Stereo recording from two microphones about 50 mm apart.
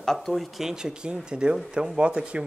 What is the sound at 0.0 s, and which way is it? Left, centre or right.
A man's voice, centre.